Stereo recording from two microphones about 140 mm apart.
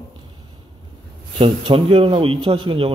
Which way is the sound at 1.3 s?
40° right (ahead or behind).